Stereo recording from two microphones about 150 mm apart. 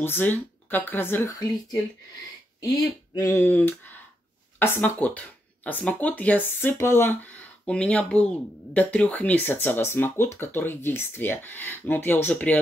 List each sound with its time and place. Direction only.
0.0 s speech: 15° left (ahead or behind)
3.2 s speech: 20° left (ahead or behind)